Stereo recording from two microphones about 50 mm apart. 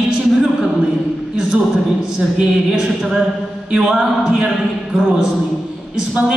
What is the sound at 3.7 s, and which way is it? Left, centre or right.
Speech, centre.